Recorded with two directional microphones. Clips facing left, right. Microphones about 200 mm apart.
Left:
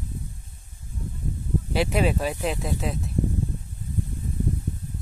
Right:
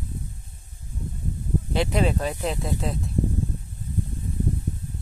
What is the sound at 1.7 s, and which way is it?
Speech, 5° left (ahead or behind).